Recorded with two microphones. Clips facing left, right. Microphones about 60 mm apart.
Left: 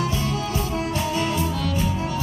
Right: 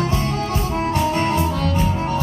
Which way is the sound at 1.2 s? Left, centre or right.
Right.